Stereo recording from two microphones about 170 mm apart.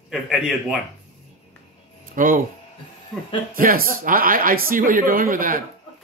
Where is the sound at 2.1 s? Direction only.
55° right (ahead or behind).